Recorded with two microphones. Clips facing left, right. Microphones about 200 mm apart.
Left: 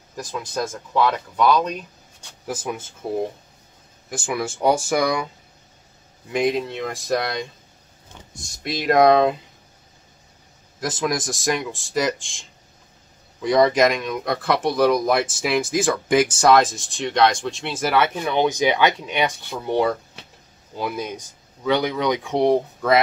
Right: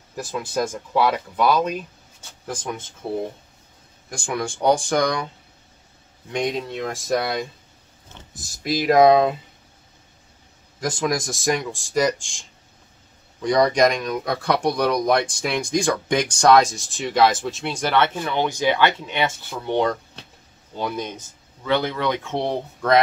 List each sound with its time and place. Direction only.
0.1 s speech: 5° right (ahead or behind)
2.4 s speech: 5° left (ahead or behind)
4.1 s speech: 5° left (ahead or behind)
6.3 s speech: 5° left (ahead or behind)
10.8 s speech: centre (ahead or behind)